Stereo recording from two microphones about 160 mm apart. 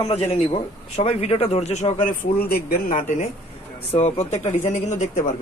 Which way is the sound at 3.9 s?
40° left (ahead or behind).